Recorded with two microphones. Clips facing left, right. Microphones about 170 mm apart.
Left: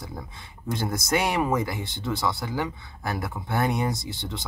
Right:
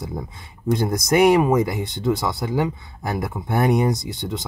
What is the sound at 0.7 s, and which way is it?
Speech, 20° right (ahead or behind).